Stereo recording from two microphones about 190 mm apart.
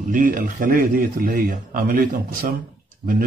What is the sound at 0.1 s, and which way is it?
A man's voice, 45° right (ahead or behind).